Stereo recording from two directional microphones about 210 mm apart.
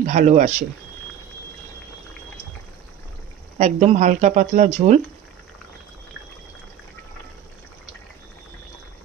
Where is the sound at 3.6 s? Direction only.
35° right (ahead or behind).